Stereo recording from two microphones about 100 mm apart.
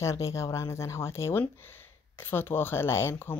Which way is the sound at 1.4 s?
20° left (ahead or behind).